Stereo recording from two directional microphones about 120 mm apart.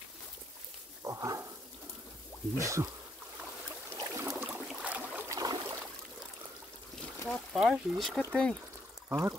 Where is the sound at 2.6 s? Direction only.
25° right (ahead or behind).